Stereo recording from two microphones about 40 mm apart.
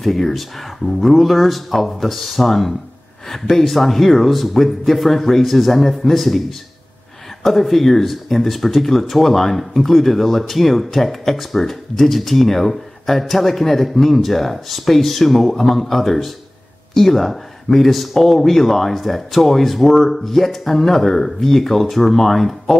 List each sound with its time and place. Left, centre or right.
0.0 s speech: centre
7.4 s speech: centre